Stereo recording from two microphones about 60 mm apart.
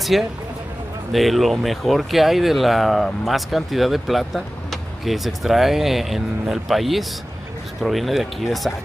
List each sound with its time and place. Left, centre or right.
0.1 s speech: centre